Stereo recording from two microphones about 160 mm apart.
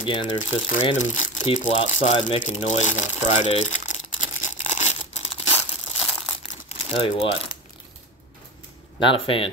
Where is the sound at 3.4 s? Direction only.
40° left (ahead or behind).